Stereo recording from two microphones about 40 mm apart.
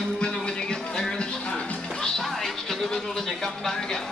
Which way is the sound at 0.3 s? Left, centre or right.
Centre.